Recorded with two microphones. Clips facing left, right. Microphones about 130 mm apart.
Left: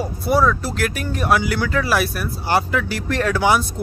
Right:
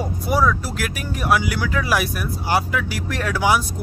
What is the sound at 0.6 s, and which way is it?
Speech, 10° right (ahead or behind).